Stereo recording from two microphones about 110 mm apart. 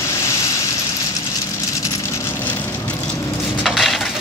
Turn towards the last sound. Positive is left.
turn(degrees=0)  # may be behind; listen again after turning